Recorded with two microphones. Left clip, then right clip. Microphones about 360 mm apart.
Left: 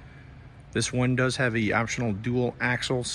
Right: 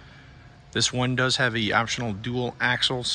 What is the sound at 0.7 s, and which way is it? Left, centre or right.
Speech, centre.